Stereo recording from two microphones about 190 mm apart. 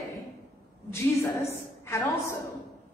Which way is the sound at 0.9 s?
15° left (ahead or behind).